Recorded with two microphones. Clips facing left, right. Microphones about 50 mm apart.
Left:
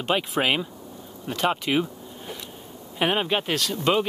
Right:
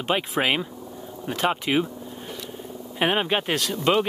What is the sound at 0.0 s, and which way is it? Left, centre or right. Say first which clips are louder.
Speech: even; centre.